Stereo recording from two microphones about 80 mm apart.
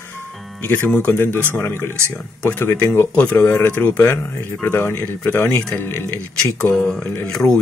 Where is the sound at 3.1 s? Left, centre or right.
Centre.